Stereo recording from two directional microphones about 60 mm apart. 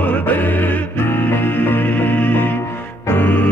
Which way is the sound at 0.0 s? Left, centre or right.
Left.